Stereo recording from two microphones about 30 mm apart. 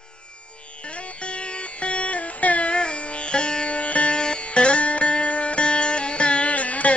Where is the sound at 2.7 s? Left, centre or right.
Left.